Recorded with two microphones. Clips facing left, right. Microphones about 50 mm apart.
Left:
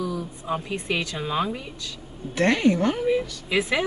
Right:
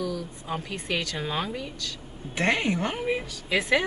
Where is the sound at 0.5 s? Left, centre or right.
Centre.